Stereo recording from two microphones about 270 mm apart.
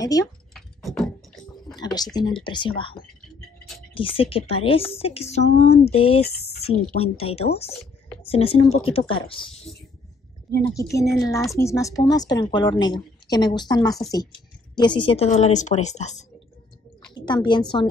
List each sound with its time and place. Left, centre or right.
0.0 s speech: centre
0.6 s a sound: centre
2.1 s a woman's voice: centre